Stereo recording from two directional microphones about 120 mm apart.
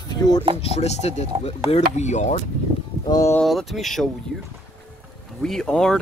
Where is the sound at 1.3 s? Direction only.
45° right (ahead or behind).